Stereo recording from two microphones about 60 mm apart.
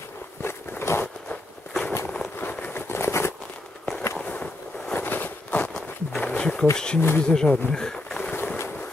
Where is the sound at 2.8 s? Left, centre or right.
Left.